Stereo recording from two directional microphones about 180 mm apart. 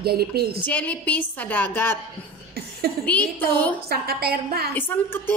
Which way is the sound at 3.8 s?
60° right (ahead or behind).